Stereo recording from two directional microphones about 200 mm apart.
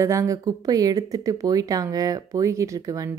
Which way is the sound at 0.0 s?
15° right (ahead or behind).